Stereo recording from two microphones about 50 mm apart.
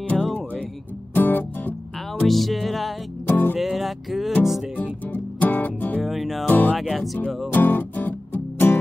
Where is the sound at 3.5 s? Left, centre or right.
Centre.